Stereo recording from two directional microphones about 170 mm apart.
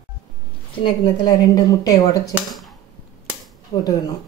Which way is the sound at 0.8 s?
30° left (ahead or behind).